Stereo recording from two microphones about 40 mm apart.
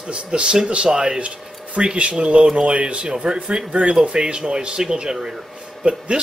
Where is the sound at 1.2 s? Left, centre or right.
Right.